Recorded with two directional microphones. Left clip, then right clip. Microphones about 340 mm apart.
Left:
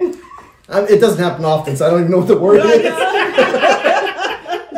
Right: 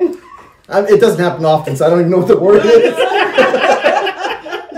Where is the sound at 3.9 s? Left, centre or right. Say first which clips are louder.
Right 1 dB; centre.